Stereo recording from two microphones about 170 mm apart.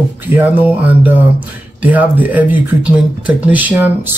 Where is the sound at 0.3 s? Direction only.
10° right (ahead or behind).